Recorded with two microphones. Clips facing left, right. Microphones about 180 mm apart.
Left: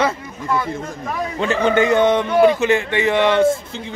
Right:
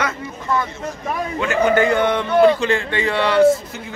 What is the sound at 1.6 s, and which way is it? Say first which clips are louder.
A man's voice: left 2 dB; 25° left (ahead or behind).